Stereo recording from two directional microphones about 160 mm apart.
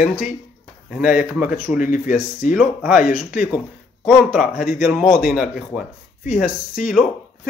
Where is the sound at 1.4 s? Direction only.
55° left (ahead or behind).